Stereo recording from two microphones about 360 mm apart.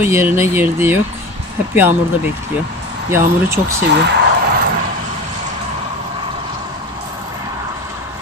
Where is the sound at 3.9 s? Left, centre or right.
Right.